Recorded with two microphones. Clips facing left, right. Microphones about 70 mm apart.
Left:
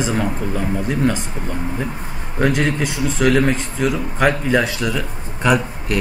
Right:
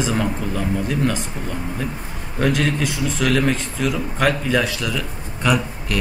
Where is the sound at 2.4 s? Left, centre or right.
Centre.